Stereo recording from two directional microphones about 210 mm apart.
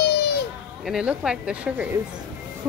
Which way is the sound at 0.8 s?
5° right (ahead or behind).